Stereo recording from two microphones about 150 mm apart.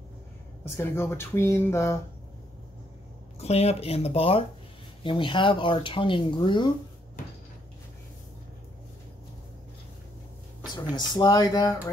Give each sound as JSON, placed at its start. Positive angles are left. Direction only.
{"t": 0.7, "sound": "speech", "side_deg": 15}
{"t": 3.3, "sound": "speech", "side_deg": 45}
{"t": 10.9, "sound": "speech", "side_deg": 30}